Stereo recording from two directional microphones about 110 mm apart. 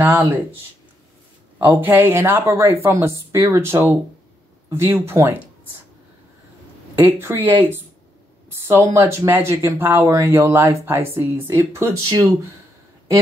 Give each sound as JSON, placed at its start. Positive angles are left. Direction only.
{"t": 1.6, "sound": "speech", "side_deg": -15}
{"t": 7.0, "sound": "speech", "side_deg": -20}